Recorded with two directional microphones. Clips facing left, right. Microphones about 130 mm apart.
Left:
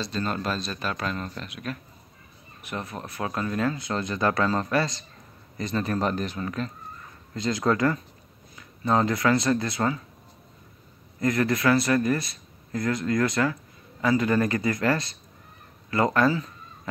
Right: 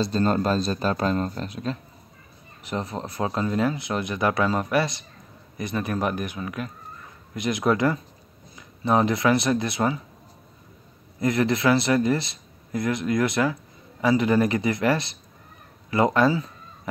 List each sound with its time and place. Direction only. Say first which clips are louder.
0.0 s speech: right 7 dB; 35° right (ahead or behind)
2.7 s speech: right 4 dB; 25° right (ahead or behind)
11.1 s speech: right 2 dB; 20° right (ahead or behind)